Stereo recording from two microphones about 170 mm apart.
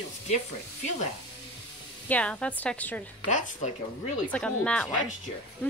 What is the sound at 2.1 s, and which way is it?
Speech, 5° left (ahead or behind).